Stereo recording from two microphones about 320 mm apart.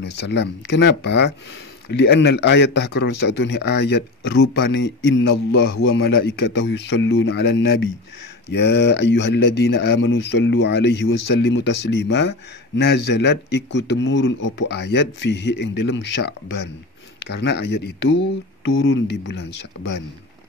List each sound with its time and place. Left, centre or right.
0.0 s speech: left